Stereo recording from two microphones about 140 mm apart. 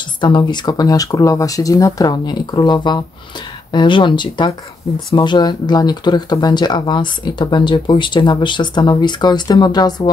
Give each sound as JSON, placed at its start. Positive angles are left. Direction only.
{"t": 0.2, "sound": "speech", "side_deg": 30}